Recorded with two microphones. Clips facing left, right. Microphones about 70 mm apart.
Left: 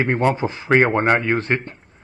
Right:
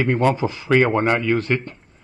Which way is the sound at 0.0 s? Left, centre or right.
Left.